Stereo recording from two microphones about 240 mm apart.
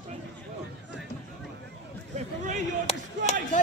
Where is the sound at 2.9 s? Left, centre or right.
Left.